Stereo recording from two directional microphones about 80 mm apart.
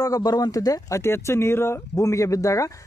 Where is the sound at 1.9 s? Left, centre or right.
Left.